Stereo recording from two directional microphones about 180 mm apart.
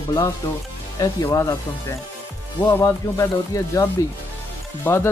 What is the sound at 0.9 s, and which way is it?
Speech, 20° left (ahead or behind).